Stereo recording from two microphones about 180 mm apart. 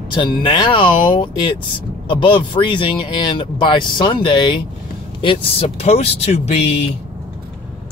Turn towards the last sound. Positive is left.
turn(degrees=35)  # may be behind; listen again after turning